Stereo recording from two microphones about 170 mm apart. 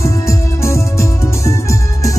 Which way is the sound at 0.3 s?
15° left (ahead or behind).